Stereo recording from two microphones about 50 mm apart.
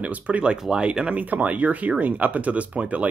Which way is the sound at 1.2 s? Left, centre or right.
Right.